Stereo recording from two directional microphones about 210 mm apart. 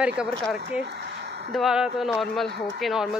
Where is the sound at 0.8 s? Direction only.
55° right (ahead or behind).